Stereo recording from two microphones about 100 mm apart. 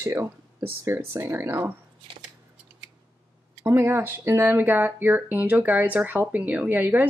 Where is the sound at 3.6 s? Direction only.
25° right (ahead or behind).